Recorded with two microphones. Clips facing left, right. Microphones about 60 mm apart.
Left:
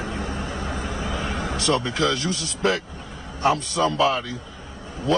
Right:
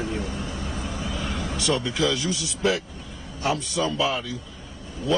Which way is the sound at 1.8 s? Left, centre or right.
Left.